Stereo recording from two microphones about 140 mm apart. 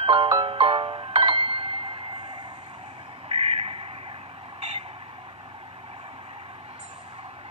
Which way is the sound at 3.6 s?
45° right (ahead or behind).